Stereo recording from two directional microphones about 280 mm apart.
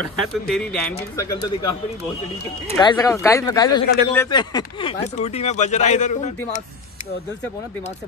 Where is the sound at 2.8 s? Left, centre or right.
Centre.